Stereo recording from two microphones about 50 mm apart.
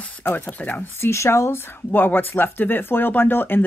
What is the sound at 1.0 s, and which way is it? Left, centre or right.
Speech, left.